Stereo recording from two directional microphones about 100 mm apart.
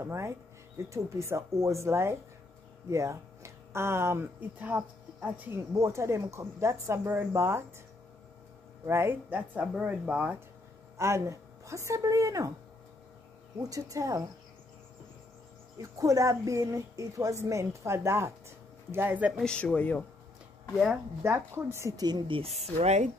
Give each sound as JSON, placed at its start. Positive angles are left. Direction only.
{"t": 0.0, "sound": "speech", "side_deg": -30}
{"t": 8.8, "sound": "speech", "side_deg": -25}
{"t": 11.0, "sound": "speech", "side_deg": -30}
{"t": 13.6, "sound": "a woman's voice", "side_deg": -35}
{"t": 15.8, "sound": "a woman's voice", "side_deg": -35}
{"t": 19.3, "sound": "speech", "side_deg": 10}
{"t": 21.2, "sound": "speech", "side_deg": -25}
{"t": 21.9, "sound": "speech", "side_deg": -45}
{"t": 22.3, "sound": "speech", "side_deg": -85}